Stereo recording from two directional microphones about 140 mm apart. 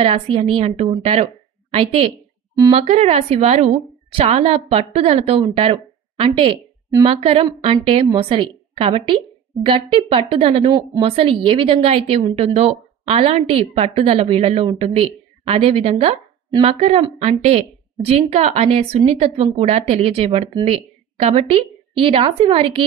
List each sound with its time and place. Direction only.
0.0 s a woman's voice: 45° right (ahead or behind)